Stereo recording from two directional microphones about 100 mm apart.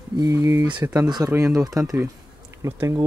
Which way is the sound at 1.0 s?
45° right (ahead or behind).